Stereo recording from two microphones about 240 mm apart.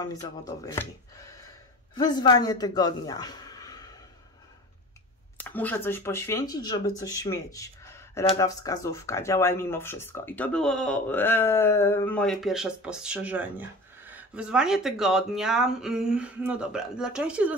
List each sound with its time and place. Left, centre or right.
0.0 s speech: centre
5.4 s speech: centre